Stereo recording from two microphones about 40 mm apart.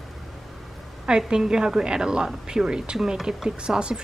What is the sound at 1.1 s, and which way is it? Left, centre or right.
A woman's voice, centre.